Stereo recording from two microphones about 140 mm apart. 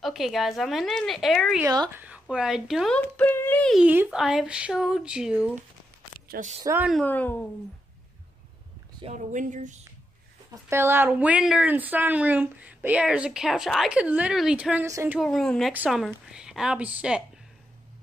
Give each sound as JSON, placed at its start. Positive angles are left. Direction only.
{"t": 0.0, "sound": "a woman's voice", "side_deg": 0}
{"t": 3.2, "sound": "a sound", "side_deg": 15}
{"t": 3.7, "sound": "a woman's voice", "side_deg": -10}
{"t": 6.2, "sound": "speech", "side_deg": -90}
{"t": 7.1, "sound": "speech", "side_deg": 10}
{"t": 9.0, "sound": "speech", "side_deg": -60}
{"t": 10.7, "sound": "speech", "side_deg": -20}
{"t": 14.9, "sound": "speech", "side_deg": -20}
{"t": 15.1, "sound": "a woman's voice", "side_deg": 5}
{"t": 15.7, "sound": "a woman's voice", "side_deg": -5}